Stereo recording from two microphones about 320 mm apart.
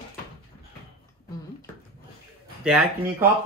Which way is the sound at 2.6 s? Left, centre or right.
Centre.